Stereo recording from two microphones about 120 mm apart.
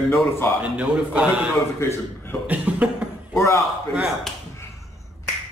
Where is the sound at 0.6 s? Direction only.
10° right (ahead or behind).